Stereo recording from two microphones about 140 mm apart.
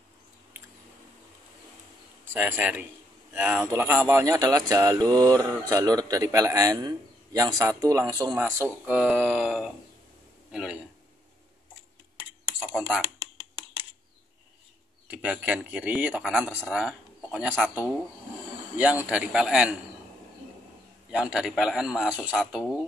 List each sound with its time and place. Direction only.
2.2 s a man's voice: 15° right (ahead or behind)
8.4 s a man's voice: 15° right (ahead or behind)
12.5 s a sound: 5° right (ahead or behind)
15.0 s a man's voice: 10° right (ahead or behind)
18.8 s a man's voice: 10° right (ahead or behind)
21.1 s a man's voice: 5° right (ahead or behind)